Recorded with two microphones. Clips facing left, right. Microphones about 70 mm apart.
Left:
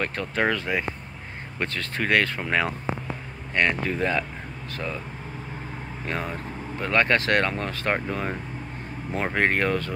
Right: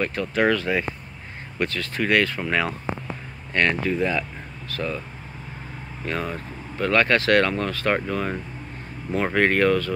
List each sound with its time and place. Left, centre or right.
0.0 s speech: left
0.4 s speech: left
1.6 s speech: left
3.8 s speech: left
6.0 s speech: left